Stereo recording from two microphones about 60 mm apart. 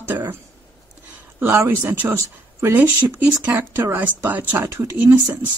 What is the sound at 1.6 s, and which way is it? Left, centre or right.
Speech, right.